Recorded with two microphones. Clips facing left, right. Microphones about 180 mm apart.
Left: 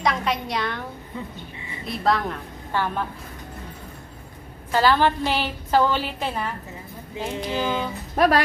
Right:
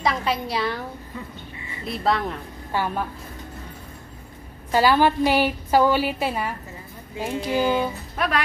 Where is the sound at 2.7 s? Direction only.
10° right (ahead or behind).